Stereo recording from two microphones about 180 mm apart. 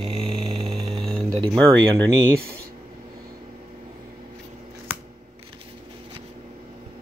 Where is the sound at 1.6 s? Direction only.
5° left (ahead or behind).